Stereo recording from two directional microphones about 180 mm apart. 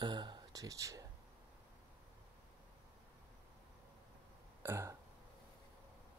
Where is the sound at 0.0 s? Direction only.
25° right (ahead or behind).